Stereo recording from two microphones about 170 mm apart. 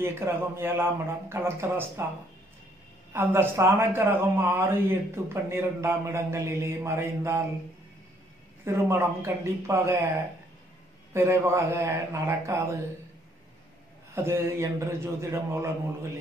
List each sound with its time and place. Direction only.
0.0 s a man's voice: 15° right (ahead or behind)
3.1 s a man's voice: 15° right (ahead or behind)
8.6 s a man's voice: 15° right (ahead or behind)
11.1 s a man's voice: 15° right (ahead or behind)
14.1 s a man's voice: 15° right (ahead or behind)